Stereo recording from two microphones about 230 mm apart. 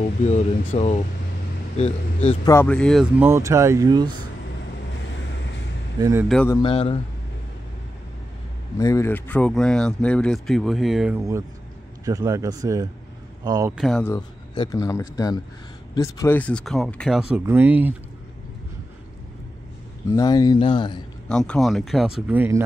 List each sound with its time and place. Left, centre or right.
0.7 s speech: left
2.2 s speech: centre
3.3 s speech: centre
5.9 s speech: centre
6.2 s speech: centre
6.6 s speech: left
8.7 s a man's voice: centre
13.7 s speech: centre
14.1 s speech: centre
20.1 s speech: centre
21.3 s speech: centre